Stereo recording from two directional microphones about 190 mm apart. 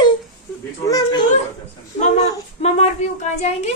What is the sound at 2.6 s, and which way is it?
A woman's voice, 35° left (ahead or behind).